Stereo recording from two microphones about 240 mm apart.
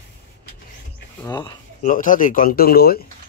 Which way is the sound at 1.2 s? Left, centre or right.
Centre.